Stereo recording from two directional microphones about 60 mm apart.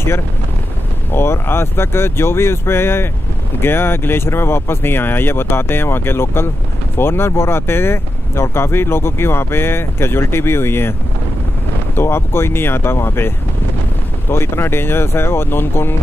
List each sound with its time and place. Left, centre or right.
1.1 s speech: left
14.3 s speech: left